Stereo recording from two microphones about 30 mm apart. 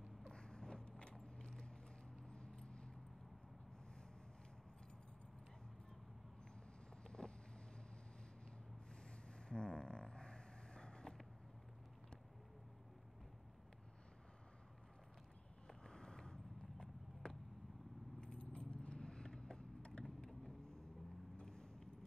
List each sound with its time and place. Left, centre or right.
0.3 s vehicle: left
1.4 s clip-clop: centre
2.2 s a sound: left
6.5 s vehicle: left
9.1 s a sound: left
15.8 s clip-clop: left
18.2 s keys jangling: left
21.4 s vehicle: left